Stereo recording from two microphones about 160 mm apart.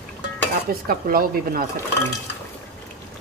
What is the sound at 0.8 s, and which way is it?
Speech, 65° right (ahead or behind).